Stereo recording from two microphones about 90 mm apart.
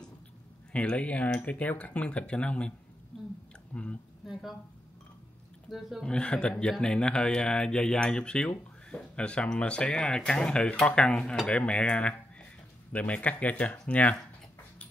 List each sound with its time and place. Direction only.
0.7 s speech: 15° left (ahead or behind)
3.7 s speech: 15° left (ahead or behind)
4.3 s speech: centre (ahead or behind)
5.7 s speech: centre (ahead or behind)
6.0 s speech: 10° left (ahead or behind)